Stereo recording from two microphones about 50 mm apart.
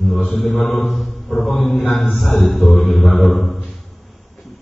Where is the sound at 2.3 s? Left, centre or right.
Centre.